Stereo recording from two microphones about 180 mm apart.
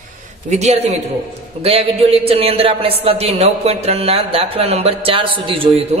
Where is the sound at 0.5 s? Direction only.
35° right (ahead or behind).